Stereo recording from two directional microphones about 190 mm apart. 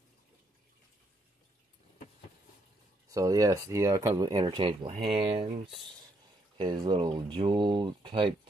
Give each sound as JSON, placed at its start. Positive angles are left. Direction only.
{"t": 3.1, "sound": "speech", "side_deg": -20}